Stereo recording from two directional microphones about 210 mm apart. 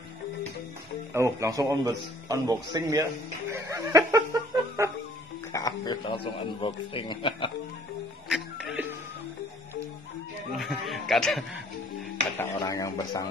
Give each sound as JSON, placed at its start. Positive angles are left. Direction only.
{"t": 1.1, "sound": "speech", "side_deg": -15}
{"t": 5.5, "sound": "a man's voice", "side_deg": 15}
{"t": 10.6, "sound": "speech", "side_deg": 0}
{"t": 12.4, "sound": "speech", "side_deg": 15}